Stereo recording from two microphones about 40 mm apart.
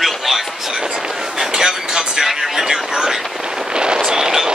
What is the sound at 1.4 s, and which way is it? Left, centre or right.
Speech, centre.